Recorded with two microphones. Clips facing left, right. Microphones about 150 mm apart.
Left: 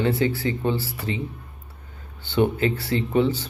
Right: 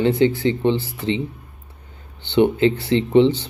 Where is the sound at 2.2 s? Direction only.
20° right (ahead or behind).